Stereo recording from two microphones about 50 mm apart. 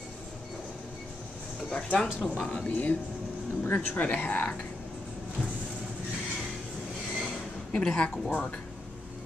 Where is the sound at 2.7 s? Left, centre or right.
Left.